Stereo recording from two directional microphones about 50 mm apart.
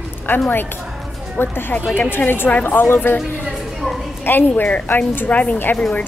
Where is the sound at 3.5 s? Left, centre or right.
Centre.